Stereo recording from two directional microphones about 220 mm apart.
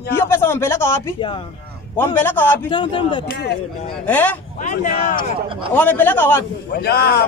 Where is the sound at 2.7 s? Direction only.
20° left (ahead or behind).